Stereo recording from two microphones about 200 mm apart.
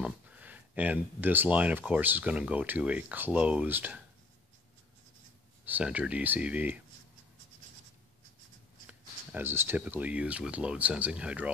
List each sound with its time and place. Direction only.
0.0 s speech: 5° right (ahead or behind)
5.7 s speech: 5° right (ahead or behind)
8.8 s speech: 10° right (ahead or behind)